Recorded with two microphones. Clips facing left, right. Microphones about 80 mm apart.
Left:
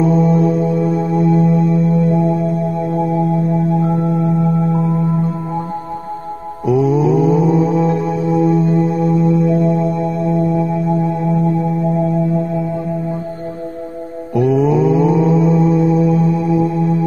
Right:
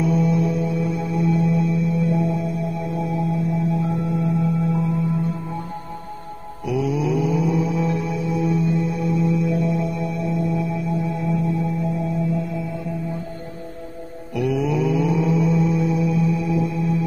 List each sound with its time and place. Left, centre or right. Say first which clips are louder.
0.0 s music: left 7 dB; left
6.6 s music: left 9 dB; left
14.3 s mantra: left 8 dB; left